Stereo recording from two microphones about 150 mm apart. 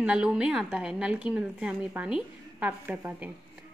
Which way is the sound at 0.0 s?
5° right (ahead or behind).